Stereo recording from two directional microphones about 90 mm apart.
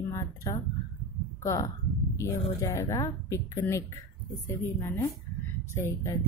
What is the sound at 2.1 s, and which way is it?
Music, 35° left (ahead or behind).